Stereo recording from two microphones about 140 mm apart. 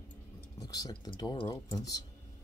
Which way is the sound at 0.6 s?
25° left (ahead or behind).